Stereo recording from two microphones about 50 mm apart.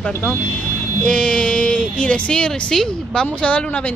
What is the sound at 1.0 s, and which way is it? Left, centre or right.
A woman's voice, centre.